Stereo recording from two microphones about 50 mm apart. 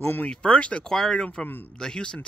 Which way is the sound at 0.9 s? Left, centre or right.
Centre.